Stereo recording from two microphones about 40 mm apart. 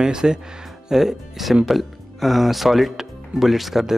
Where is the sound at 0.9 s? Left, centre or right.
Centre.